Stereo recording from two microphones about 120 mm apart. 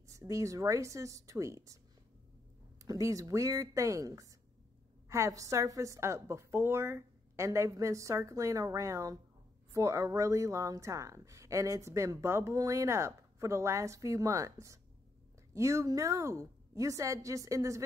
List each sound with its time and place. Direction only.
0.1 s a woman's voice: 25° right (ahead or behind)
2.8 s a woman's voice: 25° right (ahead or behind)